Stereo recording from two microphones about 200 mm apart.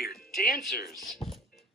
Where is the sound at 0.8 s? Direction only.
Centre (ahead or behind).